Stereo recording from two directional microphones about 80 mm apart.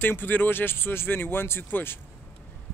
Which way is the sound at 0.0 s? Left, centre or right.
Left.